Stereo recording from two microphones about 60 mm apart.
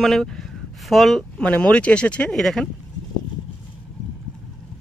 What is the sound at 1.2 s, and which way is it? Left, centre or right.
Speech, centre.